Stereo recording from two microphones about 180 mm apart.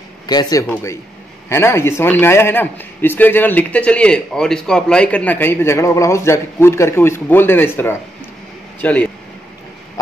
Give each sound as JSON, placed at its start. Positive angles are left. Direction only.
{"t": 0.3, "sound": "a man's voice", "side_deg": 20}